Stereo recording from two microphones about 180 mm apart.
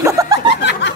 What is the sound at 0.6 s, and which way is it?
Snicker, 75° left (ahead or behind).